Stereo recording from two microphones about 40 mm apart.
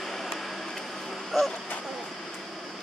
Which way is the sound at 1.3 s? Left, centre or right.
Centre.